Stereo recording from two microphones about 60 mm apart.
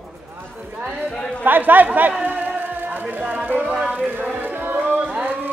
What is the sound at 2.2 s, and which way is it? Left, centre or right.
Music, right.